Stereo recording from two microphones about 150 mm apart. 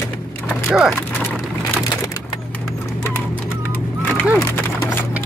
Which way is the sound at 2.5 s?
15° left (ahead or behind).